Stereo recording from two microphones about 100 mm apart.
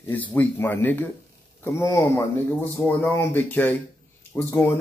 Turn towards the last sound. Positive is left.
turn(degrees=25)  # may be behind; listen again after turning